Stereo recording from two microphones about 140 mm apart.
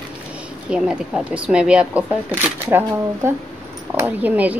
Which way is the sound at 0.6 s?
5° right (ahead or behind).